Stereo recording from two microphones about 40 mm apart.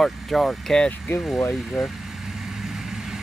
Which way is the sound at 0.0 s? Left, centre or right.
Centre.